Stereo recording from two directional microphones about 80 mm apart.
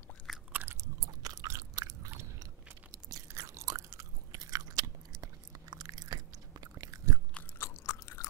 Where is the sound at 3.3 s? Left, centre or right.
Right.